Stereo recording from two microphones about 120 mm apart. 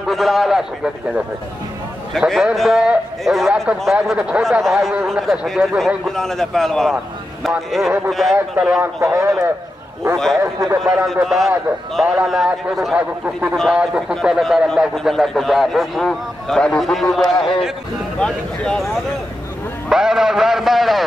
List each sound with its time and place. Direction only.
0.1 s a man's voice: centre (ahead or behind)
2.1 s a man's voice: centre (ahead or behind)
8.5 s speech: 10° right (ahead or behind)
9.0 s a man's voice: 25° right (ahead or behind)
10.1 s a man's voice: 5° left (ahead or behind)
10.4 s a man's voice: 25° right (ahead or behind)
11.2 s a man's voice: centre (ahead or behind)
12.9 s a man's voice: 10° right (ahead or behind)
17.4 s a man's voice: 45° left (ahead or behind)
18.2 s a man's voice: 5° left (ahead or behind)
19.9 s a man's voice: 5° right (ahead or behind)